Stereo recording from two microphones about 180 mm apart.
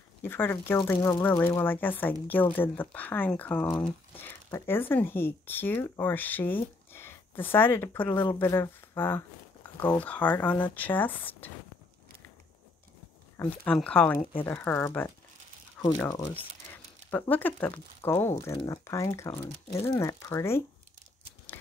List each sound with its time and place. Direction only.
0.2 s speech: 10° left (ahead or behind)
13.4 s speech: 5° left (ahead or behind)
15.8 s crumpling: 5° left (ahead or behind)
16.7 s speech: 10° left (ahead or behind)